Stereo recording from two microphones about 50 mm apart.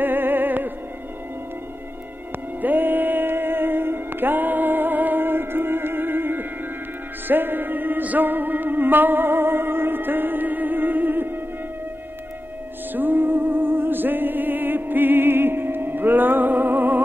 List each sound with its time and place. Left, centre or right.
0.0 s music: right
2.6 s music: right
12.9 s music: right